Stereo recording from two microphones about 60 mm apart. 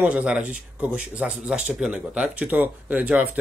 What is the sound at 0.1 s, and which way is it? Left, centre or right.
Speech, right.